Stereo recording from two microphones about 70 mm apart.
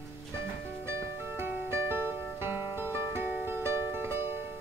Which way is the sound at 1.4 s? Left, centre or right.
Right.